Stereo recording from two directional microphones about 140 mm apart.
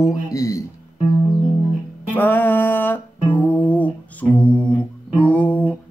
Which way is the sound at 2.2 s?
15° left (ahead or behind).